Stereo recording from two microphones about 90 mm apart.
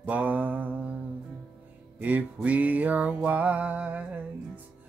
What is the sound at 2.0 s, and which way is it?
Music, 20° right (ahead or behind).